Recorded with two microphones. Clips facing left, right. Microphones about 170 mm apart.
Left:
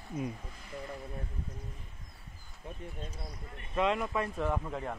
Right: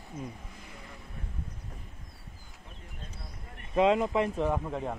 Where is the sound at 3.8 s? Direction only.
25° right (ahead or behind).